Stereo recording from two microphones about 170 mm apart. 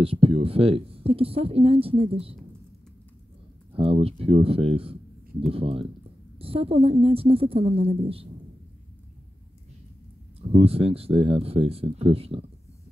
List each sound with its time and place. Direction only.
0.0 s speech: 35° right (ahead or behind)
3.7 s speech: 35° right (ahead or behind)
10.5 s speech: 35° right (ahead or behind)